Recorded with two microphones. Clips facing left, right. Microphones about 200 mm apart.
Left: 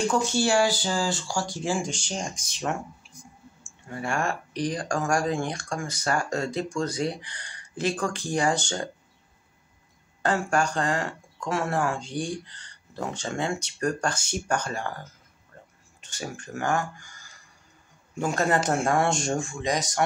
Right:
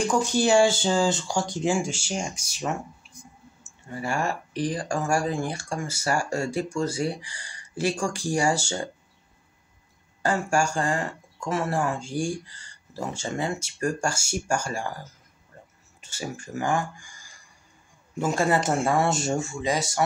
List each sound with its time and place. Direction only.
0.1 s speech: 15° right (ahead or behind)
1.8 s speech: 5° right (ahead or behind)
3.9 s speech: 5° right (ahead or behind)
10.2 s speech: 10° right (ahead or behind)